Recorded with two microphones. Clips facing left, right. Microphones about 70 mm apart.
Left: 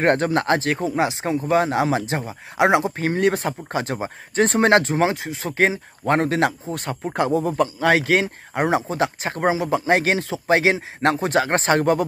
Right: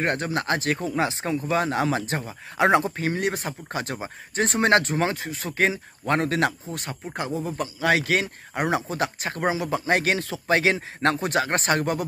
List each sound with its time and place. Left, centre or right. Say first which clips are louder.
0.0 s speech: left 7 dB; left
0.7 s speech: left 4 dB; centre
3.0 s speech: left 6 dB; left
3.6 s speech: left 5 dB; left
7.2 s speech: left 9 dB; left